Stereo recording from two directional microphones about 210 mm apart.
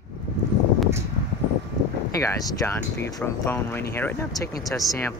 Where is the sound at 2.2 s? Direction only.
15° left (ahead or behind).